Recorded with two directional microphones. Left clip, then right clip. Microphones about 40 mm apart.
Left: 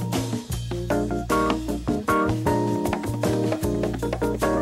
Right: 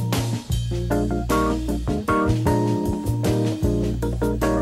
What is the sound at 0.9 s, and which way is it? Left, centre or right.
Music, right.